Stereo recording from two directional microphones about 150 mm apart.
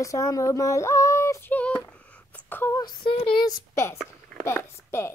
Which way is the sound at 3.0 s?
35° left (ahead or behind).